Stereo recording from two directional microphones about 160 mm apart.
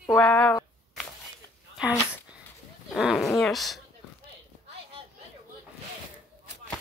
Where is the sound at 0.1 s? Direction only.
10° left (ahead or behind).